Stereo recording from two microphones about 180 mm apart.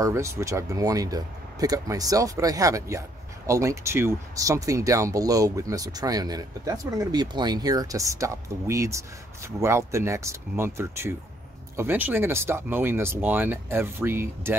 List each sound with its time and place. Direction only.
0.0 s speech: 15° right (ahead or behind)